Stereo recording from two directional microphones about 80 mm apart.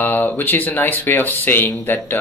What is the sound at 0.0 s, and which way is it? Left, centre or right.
Speech, left.